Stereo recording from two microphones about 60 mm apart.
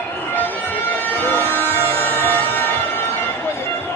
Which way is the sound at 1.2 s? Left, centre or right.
Left.